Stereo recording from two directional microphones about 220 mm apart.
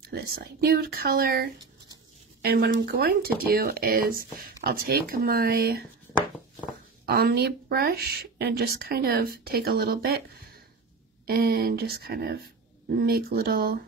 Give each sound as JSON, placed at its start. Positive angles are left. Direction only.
{"t": 0.1, "sound": "speech", "side_deg": -45}
{"t": 7.1, "sound": "speech", "side_deg": -45}